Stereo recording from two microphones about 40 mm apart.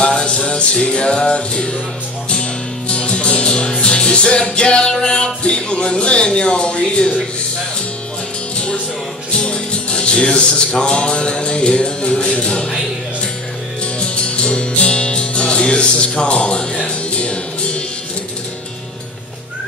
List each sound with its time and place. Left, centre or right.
0.0 s music: left
2.9 s music: left
9.4 s music: left
12.4 s speech: centre
13.9 s music: left